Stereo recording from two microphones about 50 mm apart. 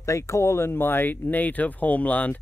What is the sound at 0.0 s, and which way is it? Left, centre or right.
Speech, left.